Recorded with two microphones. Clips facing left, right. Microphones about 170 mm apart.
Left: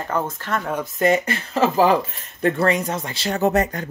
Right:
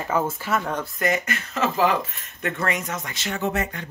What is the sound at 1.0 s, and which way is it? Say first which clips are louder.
Speech: left 7 dB; 30° left (ahead or behind).